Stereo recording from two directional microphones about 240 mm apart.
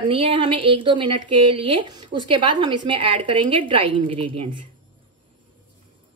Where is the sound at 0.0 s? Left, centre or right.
Right.